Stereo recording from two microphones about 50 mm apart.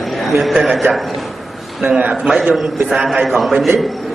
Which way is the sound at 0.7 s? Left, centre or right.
Centre.